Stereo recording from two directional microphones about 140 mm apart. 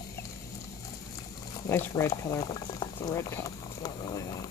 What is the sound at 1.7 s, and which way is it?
Speech, 20° left (ahead or behind).